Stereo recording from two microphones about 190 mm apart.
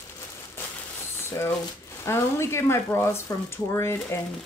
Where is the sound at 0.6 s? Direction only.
10° left (ahead or behind).